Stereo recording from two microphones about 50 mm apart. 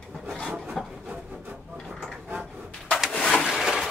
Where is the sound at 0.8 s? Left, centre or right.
Centre.